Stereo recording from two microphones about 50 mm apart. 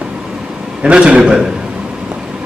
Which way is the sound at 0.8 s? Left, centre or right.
Right.